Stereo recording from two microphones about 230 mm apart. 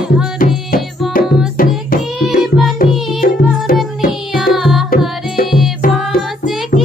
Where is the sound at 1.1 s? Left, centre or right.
Left.